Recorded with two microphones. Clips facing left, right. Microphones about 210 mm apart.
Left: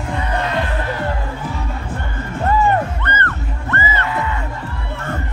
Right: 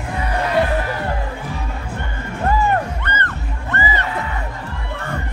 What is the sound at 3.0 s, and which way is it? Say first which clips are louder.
Music: left 2 dB; 15° right (ahead or behind).